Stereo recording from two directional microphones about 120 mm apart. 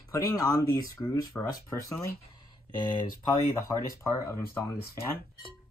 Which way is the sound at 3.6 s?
25° left (ahead or behind).